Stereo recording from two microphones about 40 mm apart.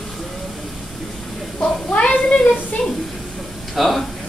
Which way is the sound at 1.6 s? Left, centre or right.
Left.